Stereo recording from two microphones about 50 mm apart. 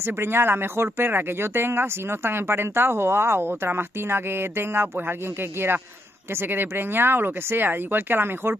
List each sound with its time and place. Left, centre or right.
0.0 s speech: right